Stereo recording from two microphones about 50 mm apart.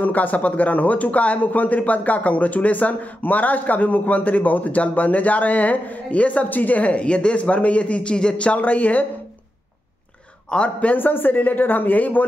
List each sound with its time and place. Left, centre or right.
0.0 s speech: left
10.5 s a man's voice: left
11.0 s speech: left